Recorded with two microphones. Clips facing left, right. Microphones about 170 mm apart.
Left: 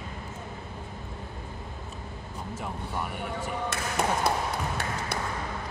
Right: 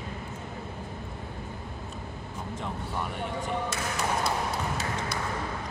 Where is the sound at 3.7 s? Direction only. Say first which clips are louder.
Left 2 dB; 55° left (ahead or behind).